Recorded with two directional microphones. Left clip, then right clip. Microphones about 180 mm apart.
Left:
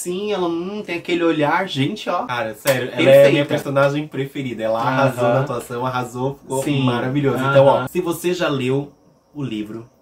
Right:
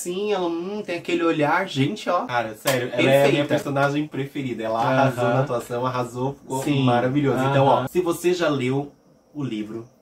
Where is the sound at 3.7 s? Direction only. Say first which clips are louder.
Left 5 dB; 15° left (ahead or behind).